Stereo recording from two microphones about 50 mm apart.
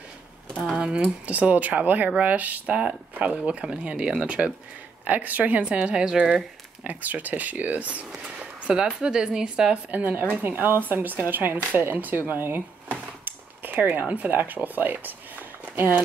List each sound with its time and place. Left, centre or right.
0.7 s a sound: right
1.2 s speech: right
2.6 s speech: centre
5.0 s speech: right
6.9 s a woman's voice: right; by 9.8 s centre
9.8 s speech: right